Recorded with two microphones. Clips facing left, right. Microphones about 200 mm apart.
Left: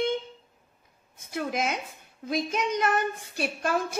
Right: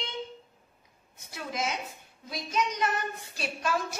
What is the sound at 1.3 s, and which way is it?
A child's voice, 55° left (ahead or behind).